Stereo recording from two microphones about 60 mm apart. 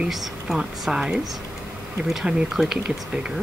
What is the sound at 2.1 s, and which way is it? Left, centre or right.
Speech, centre.